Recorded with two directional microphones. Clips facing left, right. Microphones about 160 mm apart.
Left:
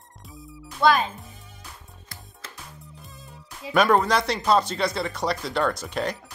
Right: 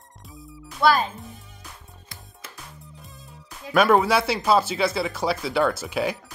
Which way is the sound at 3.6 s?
Centre (ahead or behind).